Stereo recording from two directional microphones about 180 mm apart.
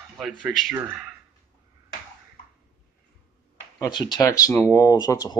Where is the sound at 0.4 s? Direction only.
Centre (ahead or behind).